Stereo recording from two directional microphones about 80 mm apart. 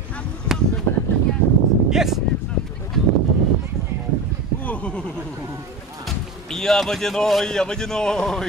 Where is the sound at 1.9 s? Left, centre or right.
Centre.